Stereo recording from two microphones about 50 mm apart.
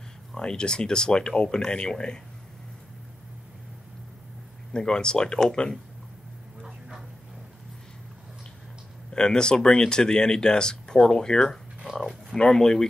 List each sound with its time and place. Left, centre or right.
0.4 s speech: centre
4.7 s speech: centre
9.1 s speech: centre
11.8 s a sound: centre
12.4 s speech: centre